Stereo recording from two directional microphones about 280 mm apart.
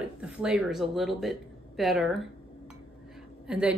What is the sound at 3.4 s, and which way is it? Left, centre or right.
Speech, centre.